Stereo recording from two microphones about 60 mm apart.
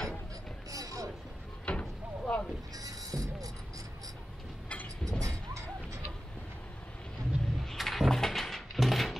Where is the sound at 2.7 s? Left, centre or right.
Right.